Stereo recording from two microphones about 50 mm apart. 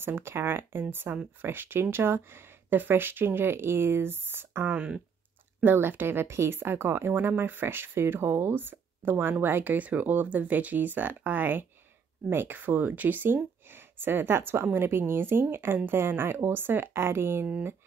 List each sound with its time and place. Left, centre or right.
0.0 s speech: right
4.7 s speech: right
5.6 s speech: right
12.3 s speech: right
12.5 s speech: right